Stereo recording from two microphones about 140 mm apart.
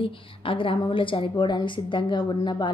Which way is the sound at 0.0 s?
40° left (ahead or behind).